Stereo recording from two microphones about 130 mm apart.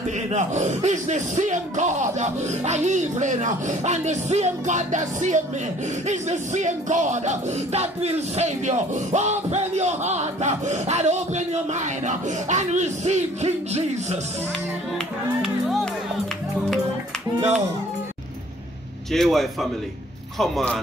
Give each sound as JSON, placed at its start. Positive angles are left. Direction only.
{"t": 0.3, "sound": "music", "side_deg": -65}
{"t": 15.4, "sound": "speech", "side_deg": 0}
{"t": 19.1, "sound": "a man's voice", "side_deg": 0}